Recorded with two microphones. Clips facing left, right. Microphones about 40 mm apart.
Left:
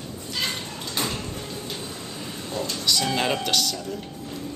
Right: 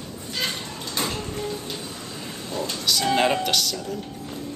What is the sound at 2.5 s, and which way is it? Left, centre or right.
Speech, right.